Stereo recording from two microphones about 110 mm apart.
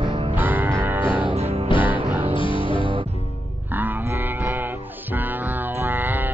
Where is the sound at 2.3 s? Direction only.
50° left (ahead or behind).